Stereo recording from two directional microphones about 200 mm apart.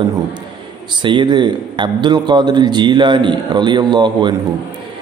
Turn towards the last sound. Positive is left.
turn(degrees=-20)  # may be behind; listen again after turning